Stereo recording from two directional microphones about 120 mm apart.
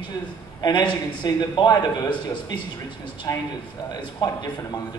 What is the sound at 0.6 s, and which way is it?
A man's voice, 40° left (ahead or behind).